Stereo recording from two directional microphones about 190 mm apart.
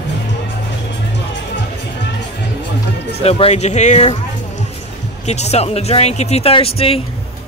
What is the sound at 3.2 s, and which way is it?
Speech, 30° left (ahead or behind).